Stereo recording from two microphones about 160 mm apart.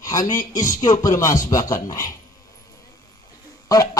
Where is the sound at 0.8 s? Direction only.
25° left (ahead or behind).